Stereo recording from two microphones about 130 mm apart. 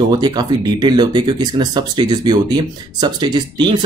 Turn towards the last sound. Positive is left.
turn(degrees=-35)  # may be behind; listen again after turning